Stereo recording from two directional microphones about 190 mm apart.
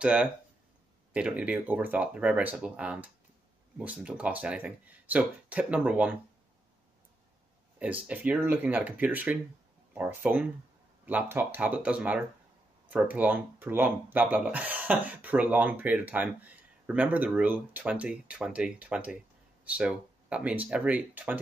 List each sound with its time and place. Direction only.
0.0 s speech: 5° right (ahead or behind)
7.8 s speech: 5° right (ahead or behind)